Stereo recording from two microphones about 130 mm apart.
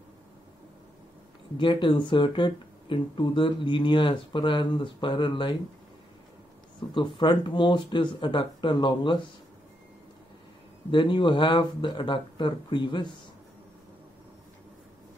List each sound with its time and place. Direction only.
1.6 s speech: 35° left (ahead or behind)
6.8 s speech: 40° left (ahead or behind)
10.9 s speech: 40° left (ahead or behind)